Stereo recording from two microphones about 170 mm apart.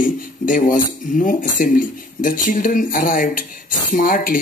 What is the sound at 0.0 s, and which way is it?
Speech, 50° left (ahead or behind).